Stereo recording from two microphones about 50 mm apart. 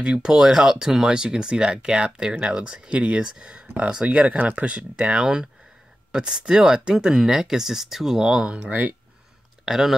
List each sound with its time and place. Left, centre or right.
0.0 s speech: centre
9.7 s speech: centre